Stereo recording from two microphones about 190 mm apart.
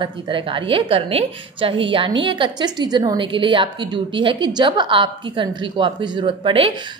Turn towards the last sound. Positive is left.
turn(degrees=-25)  # may be behind; listen again after turning